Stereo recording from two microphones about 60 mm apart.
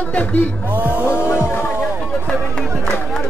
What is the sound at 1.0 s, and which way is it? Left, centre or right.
Speech, left.